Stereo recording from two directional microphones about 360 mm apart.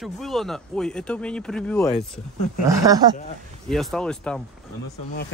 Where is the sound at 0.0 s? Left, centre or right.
Centre.